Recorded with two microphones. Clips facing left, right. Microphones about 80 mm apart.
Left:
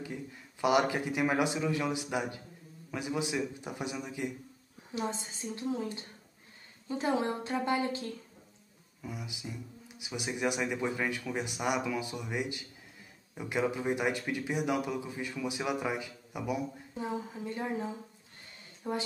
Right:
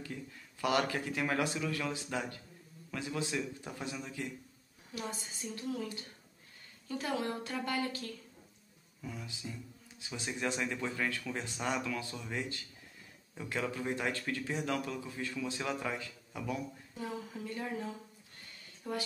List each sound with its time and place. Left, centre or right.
0.0 s speech: centre